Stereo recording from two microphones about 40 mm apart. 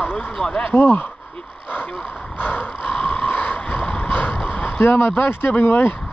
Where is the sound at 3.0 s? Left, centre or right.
Left.